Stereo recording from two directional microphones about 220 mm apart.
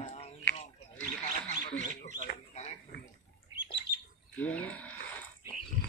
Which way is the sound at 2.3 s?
30° left (ahead or behind).